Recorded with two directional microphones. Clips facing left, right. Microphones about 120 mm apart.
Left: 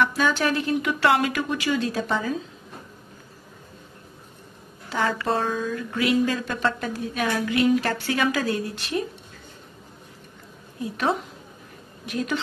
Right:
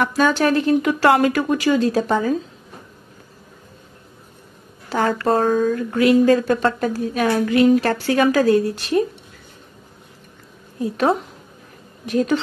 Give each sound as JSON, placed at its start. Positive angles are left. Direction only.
{"t": 0.2, "sound": "a woman's voice", "side_deg": -40}
{"t": 4.8, "sound": "a sound", "side_deg": -45}
{"t": 5.2, "sound": "speech", "side_deg": -45}
{"t": 12.1, "sound": "a woman's voice", "side_deg": -35}